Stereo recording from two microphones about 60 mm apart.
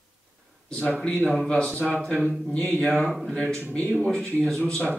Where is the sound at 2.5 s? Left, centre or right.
Left.